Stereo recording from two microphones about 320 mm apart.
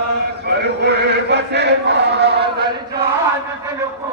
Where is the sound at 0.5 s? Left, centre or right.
Right.